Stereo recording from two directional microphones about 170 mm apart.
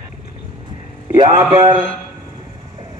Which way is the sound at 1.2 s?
25° right (ahead or behind).